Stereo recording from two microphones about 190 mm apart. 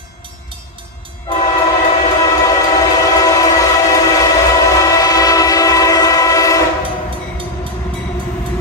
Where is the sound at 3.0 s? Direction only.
20° left (ahead or behind).